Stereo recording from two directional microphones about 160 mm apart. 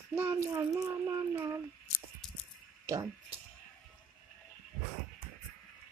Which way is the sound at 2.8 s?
20° right (ahead or behind).